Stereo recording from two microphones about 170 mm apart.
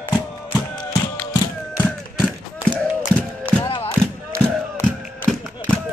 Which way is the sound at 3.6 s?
30° left (ahead or behind).